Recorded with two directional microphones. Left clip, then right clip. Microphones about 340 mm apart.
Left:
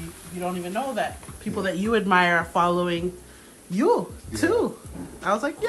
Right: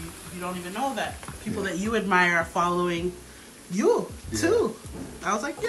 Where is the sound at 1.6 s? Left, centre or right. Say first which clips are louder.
Left 4 dB; centre.